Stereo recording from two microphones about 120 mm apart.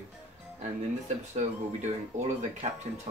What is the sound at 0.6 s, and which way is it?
Speech, 70° right (ahead or behind).